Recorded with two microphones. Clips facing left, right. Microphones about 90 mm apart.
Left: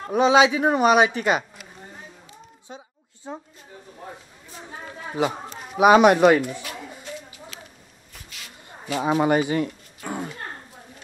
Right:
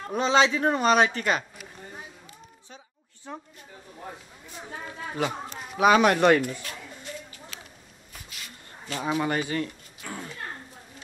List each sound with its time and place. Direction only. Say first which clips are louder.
0.0 s speech: left 5 dB; 10° left (ahead or behind)
2.7 s a woman's voice: left 7 dB; 25° left (ahead or behind)
5.8 s speech: left 5 dB; 15° left (ahead or behind)
8.8 s speech: left 6 dB; 10° left (ahead or behind)
10.0 s speech: left 7 dB; 25° left (ahead or behind)